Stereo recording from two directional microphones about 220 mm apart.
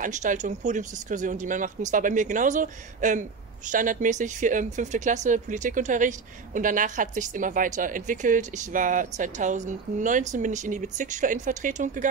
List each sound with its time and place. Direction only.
0.0 s speech: 35° right (ahead or behind)